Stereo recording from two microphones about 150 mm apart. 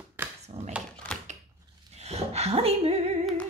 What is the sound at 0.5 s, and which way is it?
Speech, 45° right (ahead or behind).